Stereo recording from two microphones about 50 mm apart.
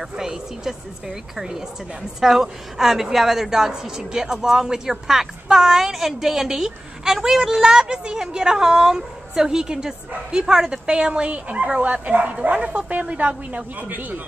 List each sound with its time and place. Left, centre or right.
0.2 s a woman's voice: centre; by 14.2 s right